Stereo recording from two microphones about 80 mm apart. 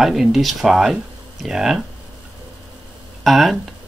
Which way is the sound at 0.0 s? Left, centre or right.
Centre.